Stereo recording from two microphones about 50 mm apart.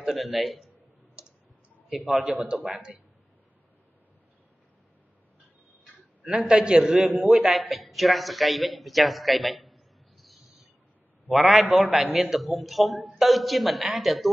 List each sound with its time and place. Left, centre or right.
0.0 s a man's voice: centre
1.9 s a man's voice: centre
2.3 s a man's voice: centre
6.2 s a man's voice: centre